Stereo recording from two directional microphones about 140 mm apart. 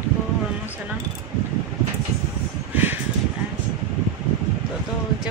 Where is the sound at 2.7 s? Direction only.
15° right (ahead or behind).